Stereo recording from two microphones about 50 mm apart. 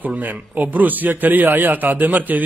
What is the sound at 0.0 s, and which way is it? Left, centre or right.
A man's voice, right.